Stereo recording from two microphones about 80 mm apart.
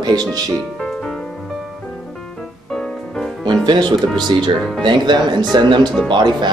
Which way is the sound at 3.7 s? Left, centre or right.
Right.